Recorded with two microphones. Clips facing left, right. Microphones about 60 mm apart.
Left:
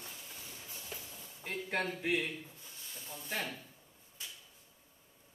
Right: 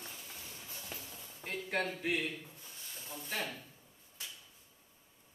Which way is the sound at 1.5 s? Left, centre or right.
Centre.